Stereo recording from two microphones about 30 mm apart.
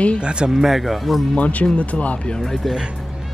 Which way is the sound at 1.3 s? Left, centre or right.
Left.